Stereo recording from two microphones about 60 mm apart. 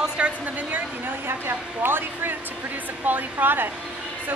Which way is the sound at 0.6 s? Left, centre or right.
Right.